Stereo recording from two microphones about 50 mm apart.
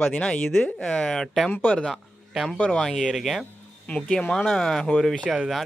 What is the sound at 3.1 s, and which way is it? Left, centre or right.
Speech, centre.